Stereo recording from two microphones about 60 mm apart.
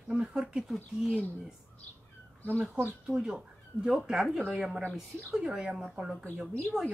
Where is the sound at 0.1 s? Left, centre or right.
Centre.